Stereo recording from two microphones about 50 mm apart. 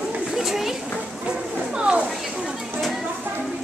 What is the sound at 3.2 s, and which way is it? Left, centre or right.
Music, right.